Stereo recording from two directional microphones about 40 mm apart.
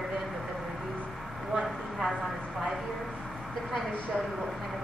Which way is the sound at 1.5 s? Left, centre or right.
Centre.